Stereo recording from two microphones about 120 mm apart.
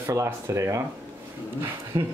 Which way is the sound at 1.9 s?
35° right (ahead or behind).